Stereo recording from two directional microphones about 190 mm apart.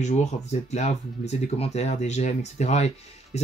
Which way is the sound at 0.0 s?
40° left (ahead or behind).